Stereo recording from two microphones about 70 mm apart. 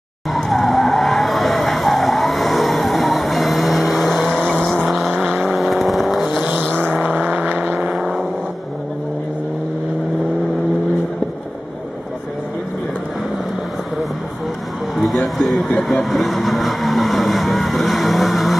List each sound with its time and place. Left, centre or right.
0.3 s vehicle: centre
6.4 s vehicle: right
7.9 s vehicle: centre
15.0 s music: centre
15.8 s vehicle: centre